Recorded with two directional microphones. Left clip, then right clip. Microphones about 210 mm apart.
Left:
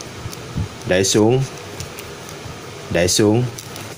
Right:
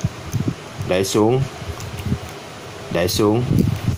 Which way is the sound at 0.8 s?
15° left (ahead or behind).